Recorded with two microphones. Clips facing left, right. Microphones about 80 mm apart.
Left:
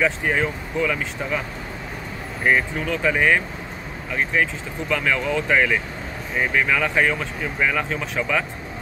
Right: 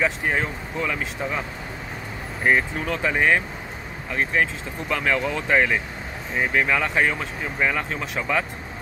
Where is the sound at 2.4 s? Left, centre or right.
Right.